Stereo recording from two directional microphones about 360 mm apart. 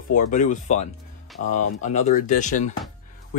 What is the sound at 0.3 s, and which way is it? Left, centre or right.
Speech, centre.